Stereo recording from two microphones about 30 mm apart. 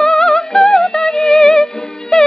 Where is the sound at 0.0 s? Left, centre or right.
Left.